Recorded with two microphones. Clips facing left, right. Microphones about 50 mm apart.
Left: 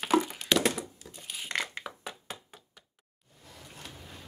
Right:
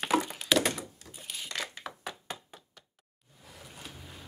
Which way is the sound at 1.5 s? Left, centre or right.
Left.